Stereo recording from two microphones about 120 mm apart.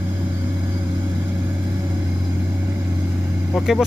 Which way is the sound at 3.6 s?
Centre (ahead or behind).